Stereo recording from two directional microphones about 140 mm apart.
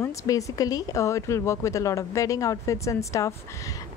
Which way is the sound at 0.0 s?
20° left (ahead or behind).